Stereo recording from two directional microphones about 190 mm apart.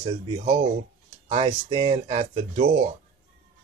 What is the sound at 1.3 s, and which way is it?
Speech, 30° right (ahead or behind).